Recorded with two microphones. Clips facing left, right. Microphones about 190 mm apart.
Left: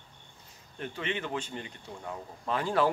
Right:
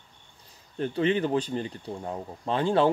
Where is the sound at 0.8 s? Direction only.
35° right (ahead or behind).